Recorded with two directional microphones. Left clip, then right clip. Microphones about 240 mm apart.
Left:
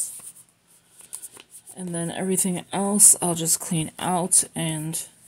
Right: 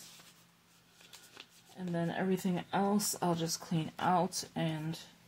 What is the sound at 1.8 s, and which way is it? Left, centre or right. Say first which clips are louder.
Speech: left 6 dB; left.